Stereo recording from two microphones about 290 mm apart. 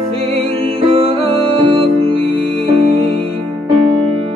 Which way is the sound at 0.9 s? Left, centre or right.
Centre.